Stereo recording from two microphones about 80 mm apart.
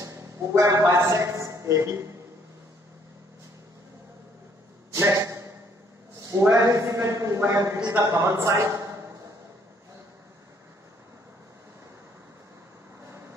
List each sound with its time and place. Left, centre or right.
0.0 s a man's voice: right
4.9 s a sound: right
6.4 s a man's voice: right